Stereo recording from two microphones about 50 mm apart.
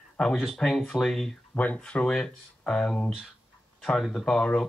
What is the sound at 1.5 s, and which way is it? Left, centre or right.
Speech, left.